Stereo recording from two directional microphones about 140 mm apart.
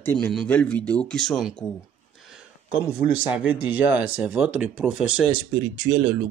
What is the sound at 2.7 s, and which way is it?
Speech, 10° right (ahead or behind).